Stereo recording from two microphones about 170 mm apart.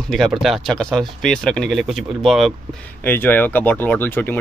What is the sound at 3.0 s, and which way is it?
Speech, 10° left (ahead or behind).